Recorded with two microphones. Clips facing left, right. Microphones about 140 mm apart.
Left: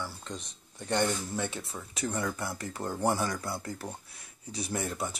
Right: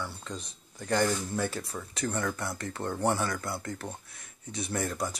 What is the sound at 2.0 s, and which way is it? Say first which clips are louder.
Speech: right 1 dB; 10° left (ahead or behind).